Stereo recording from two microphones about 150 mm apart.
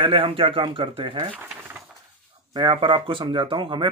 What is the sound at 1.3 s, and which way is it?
Coin, 10° right (ahead or behind).